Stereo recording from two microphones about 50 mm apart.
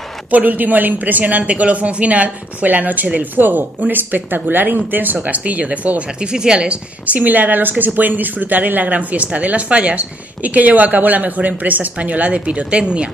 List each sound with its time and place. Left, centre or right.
0.3 s speech: right; by 6.8 s centre
7.1 s speech: right